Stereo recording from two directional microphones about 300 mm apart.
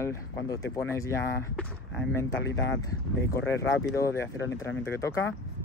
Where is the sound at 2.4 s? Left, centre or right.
Left.